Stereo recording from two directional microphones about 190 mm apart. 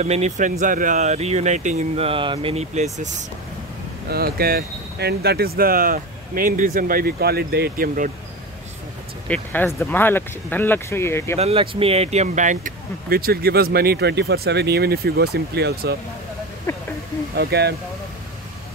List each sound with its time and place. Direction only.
0.0 s speech: 35° right (ahead or behind)
4.1 s speech: 55° right (ahead or behind)
9.3 s speech: 10° left (ahead or behind)
11.3 s speech: 30° right (ahead or behind); by 16.0 s 55° right (ahead or behind)
16.7 s speech: 15° left (ahead or behind)
17.4 s speech: 60° right (ahead or behind)